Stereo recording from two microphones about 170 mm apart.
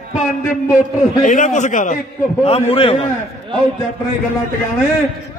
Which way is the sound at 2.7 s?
35° left (ahead or behind).